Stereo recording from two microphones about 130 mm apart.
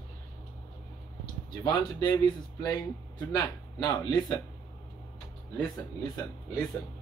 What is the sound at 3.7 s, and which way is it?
Speech, 35° left (ahead or behind).